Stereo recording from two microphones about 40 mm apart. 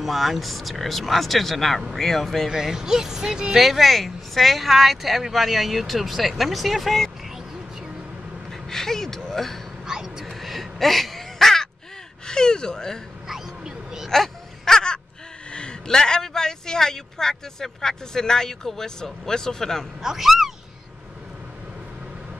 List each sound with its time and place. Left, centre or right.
0.0 s a man's voice: centre
2.5 s speech: centre
3.5 s speech: centre
8.5 s speech: centre
9.8 s a sound: centre
10.4 s crow: centre
12.3 s a man's voice: centre
13.3 s a sound: centre
14.0 s a sound: centre
15.5 s a man's voice: left
20.0 s speech: centre